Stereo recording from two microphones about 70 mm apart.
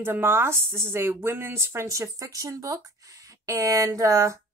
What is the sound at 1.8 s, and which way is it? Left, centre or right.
A woman's voice, right.